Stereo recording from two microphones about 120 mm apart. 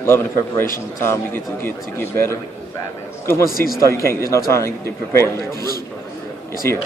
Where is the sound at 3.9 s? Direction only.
20° left (ahead or behind).